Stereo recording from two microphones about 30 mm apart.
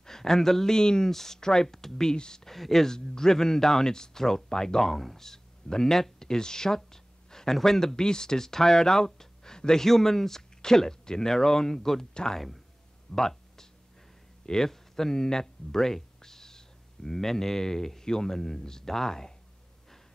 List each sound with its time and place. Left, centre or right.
0.0 s a man's voice: centre
2.1 s speech: left
2.4 s a man's voice: centre
9.8 s a man's voice: centre
13.1 s a sound: centre
17.1 s a man's voice: centre